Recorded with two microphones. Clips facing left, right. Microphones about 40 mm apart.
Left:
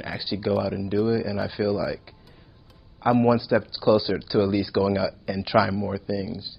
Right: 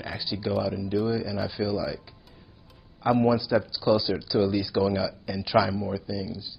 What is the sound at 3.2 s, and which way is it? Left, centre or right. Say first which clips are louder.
Speech: left 3 dB; centre.